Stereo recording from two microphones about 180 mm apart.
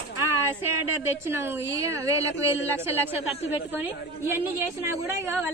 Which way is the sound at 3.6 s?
10° right (ahead or behind).